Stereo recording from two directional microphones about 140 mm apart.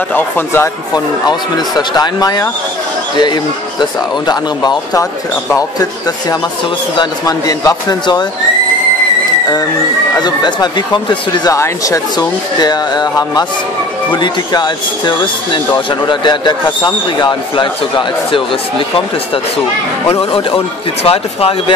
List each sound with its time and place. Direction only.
0.1 s speech: 15° left (ahead or behind)
1.8 s speech: 30° left (ahead or behind)
4.3 s speech: 30° left (ahead or behind)
7.0 s speech: 25° left (ahead or behind)
10.2 s a man's voice: 30° left (ahead or behind)
20.1 s a man's voice: 40° left (ahead or behind)